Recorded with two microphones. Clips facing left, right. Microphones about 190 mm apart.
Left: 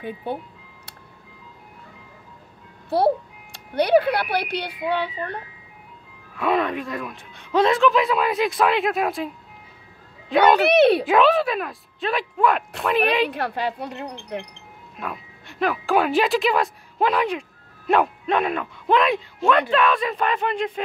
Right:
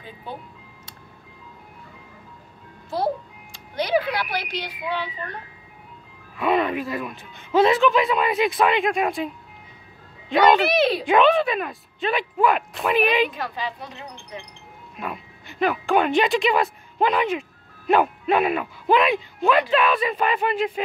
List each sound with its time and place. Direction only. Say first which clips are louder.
0.0 s speech: left 8 dB; 60° left (ahead or behind)
3.7 s speech: left 5 dB; 60° left (ahead or behind)
6.3 s speech: right 1 dB; centre (ahead or behind)
10.3 s speech: left 2 dB; centre (ahead or behind)
13.3 s speech: left 4 dB; 65° left (ahead or behind)
15.0 s speech: even; centre (ahead or behind)